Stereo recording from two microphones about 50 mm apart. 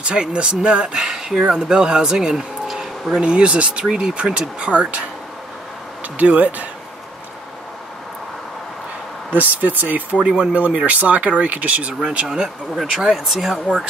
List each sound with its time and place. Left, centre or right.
0.0 s speech: centre
1.0 s a sound: centre
1.5 s speech: centre
3.2 s speech: right
6.1 s speech: right
9.3 s speech: right
10.1 s speech: right
12.9 s speech: centre